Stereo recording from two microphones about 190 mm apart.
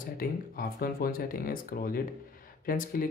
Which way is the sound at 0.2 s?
50° left (ahead or behind).